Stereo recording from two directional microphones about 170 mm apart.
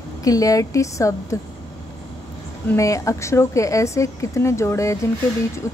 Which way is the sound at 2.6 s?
20° left (ahead or behind).